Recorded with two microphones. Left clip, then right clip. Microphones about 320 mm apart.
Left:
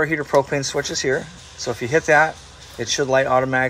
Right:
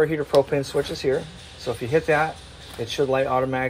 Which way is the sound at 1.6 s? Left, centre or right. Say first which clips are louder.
Left 3 dB; centre.